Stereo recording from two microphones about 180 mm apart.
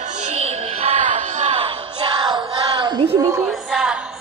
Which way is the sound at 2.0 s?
25° right (ahead or behind).